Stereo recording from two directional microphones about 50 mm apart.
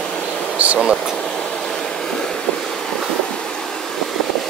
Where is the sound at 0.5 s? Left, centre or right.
Right.